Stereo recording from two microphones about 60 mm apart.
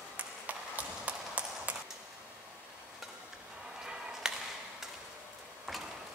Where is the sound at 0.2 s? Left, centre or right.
Right.